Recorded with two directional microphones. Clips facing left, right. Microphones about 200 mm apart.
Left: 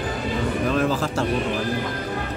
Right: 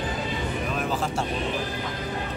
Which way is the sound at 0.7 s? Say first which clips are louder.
Left 5 dB; 90° left.